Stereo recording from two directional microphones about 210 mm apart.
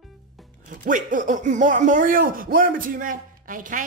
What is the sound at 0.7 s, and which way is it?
Speech, 40° right (ahead or behind).